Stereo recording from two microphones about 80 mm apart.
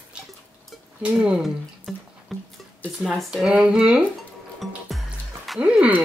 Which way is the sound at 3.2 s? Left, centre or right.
Centre.